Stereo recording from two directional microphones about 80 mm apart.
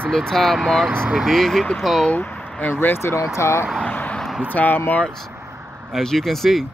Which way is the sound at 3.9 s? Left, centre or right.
Left.